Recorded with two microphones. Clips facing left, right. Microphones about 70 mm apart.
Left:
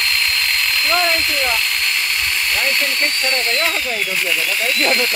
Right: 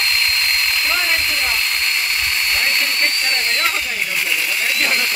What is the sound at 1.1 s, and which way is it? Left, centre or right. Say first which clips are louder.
Vacuum cleaner: left 1 dB; right.